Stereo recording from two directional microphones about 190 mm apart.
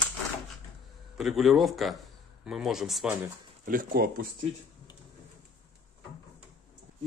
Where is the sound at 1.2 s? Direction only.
Centre (ahead or behind).